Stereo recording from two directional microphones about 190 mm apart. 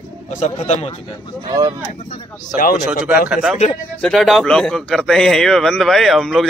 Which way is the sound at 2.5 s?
50° left (ahead or behind).